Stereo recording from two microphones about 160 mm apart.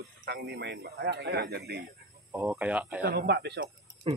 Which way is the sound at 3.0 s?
90° right.